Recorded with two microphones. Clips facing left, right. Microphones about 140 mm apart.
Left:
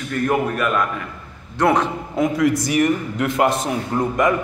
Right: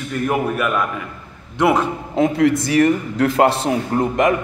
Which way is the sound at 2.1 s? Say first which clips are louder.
Right 3 dB; 30° right (ahead or behind).